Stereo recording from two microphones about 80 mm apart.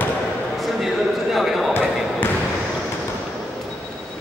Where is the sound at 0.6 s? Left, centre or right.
Centre.